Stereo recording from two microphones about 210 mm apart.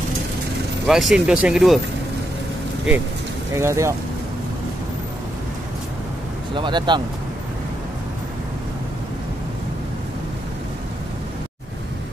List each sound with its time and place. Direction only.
0.8 s speech: centre (ahead or behind)
3.5 s speech: 15° right (ahead or behind)
6.5 s speech: 20° right (ahead or behind)